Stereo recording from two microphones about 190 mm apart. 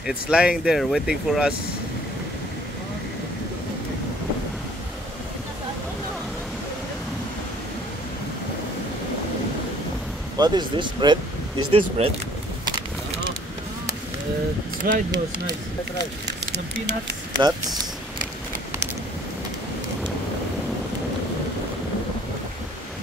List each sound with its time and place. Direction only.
0.0 s speech: 5° right (ahead or behind)
10.4 s speech: 25° right (ahead or behind)
14.8 s speech: 50° right (ahead or behind)
17.4 s speech: 20° right (ahead or behind)